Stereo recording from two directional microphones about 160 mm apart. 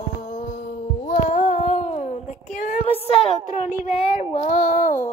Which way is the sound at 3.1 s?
45° left (ahead or behind).